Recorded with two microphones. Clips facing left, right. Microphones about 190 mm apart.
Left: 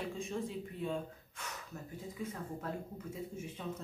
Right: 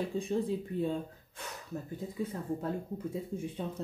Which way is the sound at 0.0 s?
35° right (ahead or behind).